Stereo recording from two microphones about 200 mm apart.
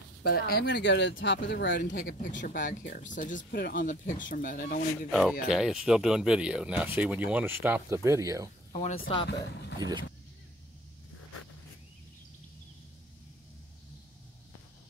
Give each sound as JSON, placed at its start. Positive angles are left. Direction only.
{"t": 0.2, "sound": "speech", "side_deg": 50}
{"t": 1.9, "sound": "speech", "side_deg": 45}
{"t": 5.5, "sound": "speech", "side_deg": -5}
{"t": 8.7, "sound": "speech", "side_deg": 35}
{"t": 9.2, "sound": "speech", "side_deg": 60}
{"t": 9.8, "sound": "speech", "side_deg": -20}